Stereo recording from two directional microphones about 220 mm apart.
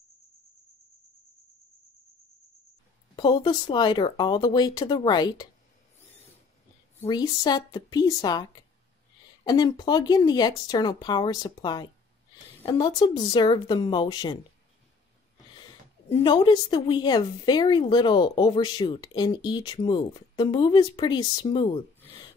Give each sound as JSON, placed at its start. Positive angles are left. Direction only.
{"t": 3.2, "sound": "a woman's voice", "side_deg": 20}
{"t": 7.0, "sound": "a woman's voice", "side_deg": 20}
{"t": 15.5, "sound": "a woman's voice", "side_deg": 20}